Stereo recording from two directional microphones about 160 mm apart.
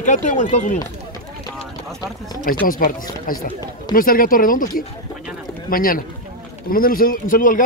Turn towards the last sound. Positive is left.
turn(degrees=55)  # may be behind; listen again after turning